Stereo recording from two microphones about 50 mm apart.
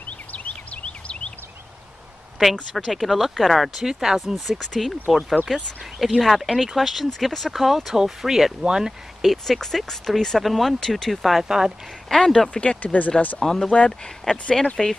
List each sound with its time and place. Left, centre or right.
0.0 s a sound: left
2.7 s speech: centre
4.5 s speech: centre
12.1 s speech: centre
12.8 s speech: left
13.4 s speech: centre
13.7 s speech: centre